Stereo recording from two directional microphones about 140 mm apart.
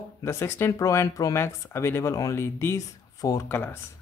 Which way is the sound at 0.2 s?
20° left (ahead or behind).